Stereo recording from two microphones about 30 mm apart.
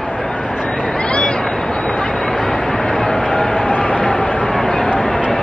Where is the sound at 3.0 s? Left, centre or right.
Left.